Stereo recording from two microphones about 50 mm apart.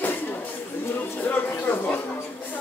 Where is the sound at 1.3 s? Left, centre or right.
Left.